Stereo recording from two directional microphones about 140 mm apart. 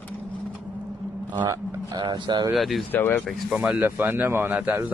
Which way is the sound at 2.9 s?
15° left (ahead or behind).